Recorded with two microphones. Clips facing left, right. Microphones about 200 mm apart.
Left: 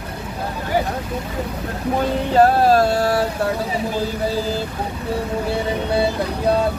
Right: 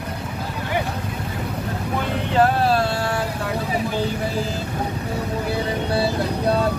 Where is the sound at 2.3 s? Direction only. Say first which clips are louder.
Left 4 dB; 40° left (ahead or behind).